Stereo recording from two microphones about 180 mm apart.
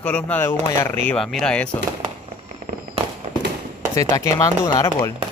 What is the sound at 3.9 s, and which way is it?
Speech, 20° left (ahead or behind).